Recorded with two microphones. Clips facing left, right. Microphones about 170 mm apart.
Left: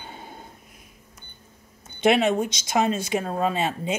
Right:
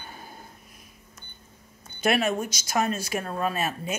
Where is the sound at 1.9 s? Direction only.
20° left (ahead or behind).